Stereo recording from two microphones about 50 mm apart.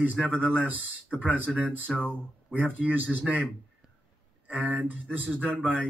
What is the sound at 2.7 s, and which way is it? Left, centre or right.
Speech, right.